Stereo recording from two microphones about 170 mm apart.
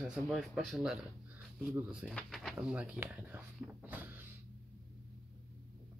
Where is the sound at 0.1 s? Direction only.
Centre (ahead or behind).